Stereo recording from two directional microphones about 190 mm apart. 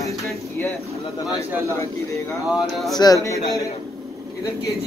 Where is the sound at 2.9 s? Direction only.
20° left (ahead or behind).